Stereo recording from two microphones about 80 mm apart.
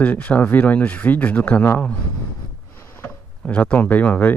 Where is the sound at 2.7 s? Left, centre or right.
Left.